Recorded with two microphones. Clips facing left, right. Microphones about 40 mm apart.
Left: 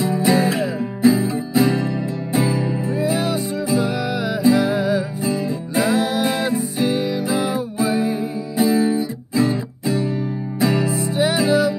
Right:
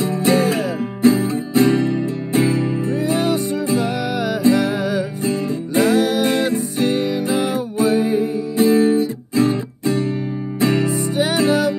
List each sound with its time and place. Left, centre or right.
0.0 s music: centre
4.4 s music: centre
7.0 s music: right
8.5 s music: centre